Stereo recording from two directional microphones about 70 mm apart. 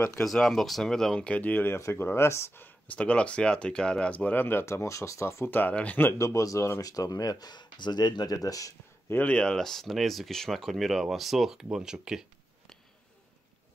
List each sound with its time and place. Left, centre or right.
0.2 s speech: centre; by 1.8 s left
1.8 s speech: left
3.0 s speech: centre; by 5.5 s left
5.5 s speech: left
6.1 s speech: left
9.3 s speech: centre